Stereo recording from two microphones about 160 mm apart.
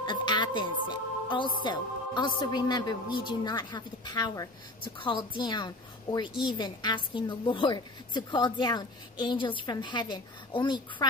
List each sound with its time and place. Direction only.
0.0 s music: 30° left (ahead or behind)
1.6 s speech: 30° left (ahead or behind)